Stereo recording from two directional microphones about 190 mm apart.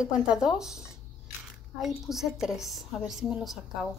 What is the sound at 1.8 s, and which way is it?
A woman's voice, centre (ahead or behind).